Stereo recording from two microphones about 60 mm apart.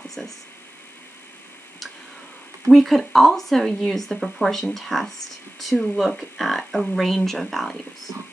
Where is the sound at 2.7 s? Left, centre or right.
Centre.